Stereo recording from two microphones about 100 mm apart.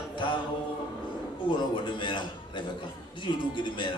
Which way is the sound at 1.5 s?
55° left (ahead or behind).